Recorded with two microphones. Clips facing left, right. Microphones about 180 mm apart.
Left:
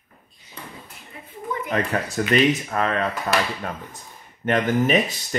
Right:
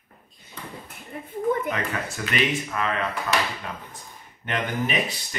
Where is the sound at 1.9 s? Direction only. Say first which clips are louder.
Left 7 dB; 40° left (ahead or behind).